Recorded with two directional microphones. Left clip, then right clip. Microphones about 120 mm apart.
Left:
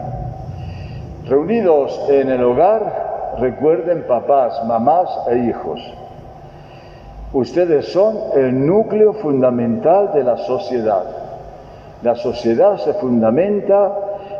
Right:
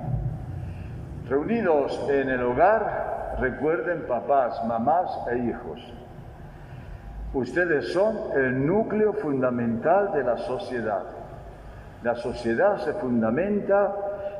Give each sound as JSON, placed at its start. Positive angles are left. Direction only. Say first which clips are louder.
{"t": 1.3, "sound": "a man's voice", "louder": "left 9 dB", "side_deg": 30}
{"t": 7.3, "sound": "a man's voice", "louder": "left 9 dB", "side_deg": 30}